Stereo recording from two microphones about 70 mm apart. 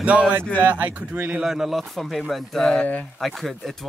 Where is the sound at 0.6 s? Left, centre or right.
Right.